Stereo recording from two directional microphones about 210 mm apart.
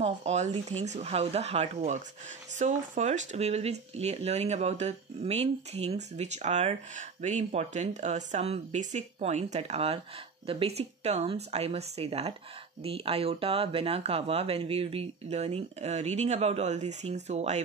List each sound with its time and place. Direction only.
0.0 s speech: 30° right (ahead or behind)